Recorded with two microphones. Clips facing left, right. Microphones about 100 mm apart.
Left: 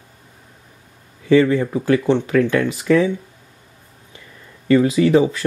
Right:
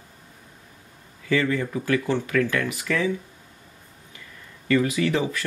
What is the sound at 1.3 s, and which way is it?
Speech, 30° left (ahead or behind).